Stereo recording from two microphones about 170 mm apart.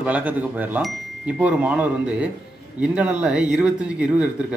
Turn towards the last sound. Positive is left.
turn(degrees=-5)  # may be behind; listen again after turning